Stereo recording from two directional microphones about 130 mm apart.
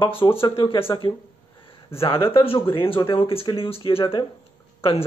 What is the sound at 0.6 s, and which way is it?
A man's voice, 45° left (ahead or behind).